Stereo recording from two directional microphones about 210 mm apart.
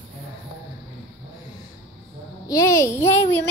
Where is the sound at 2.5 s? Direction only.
15° left (ahead or behind).